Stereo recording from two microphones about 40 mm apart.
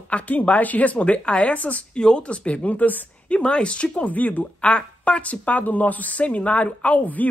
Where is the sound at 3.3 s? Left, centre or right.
Left.